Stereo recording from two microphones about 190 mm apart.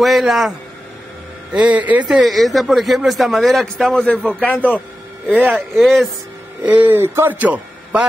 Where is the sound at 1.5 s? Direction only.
5° right (ahead or behind).